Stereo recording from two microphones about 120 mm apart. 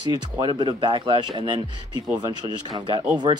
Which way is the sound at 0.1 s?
35° right (ahead or behind).